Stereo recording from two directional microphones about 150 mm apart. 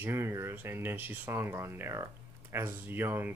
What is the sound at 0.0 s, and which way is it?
Speech, 15° right (ahead or behind).